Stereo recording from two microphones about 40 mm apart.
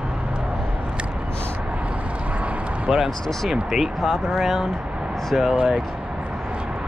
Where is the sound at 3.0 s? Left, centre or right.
Centre.